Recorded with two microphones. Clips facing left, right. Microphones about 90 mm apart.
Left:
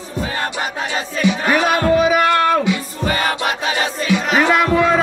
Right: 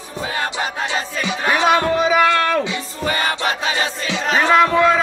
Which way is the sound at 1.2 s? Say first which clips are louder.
Left 2 dB; 30° right (ahead or behind).